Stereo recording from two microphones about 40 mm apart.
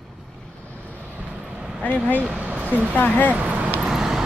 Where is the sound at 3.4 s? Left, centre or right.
Right.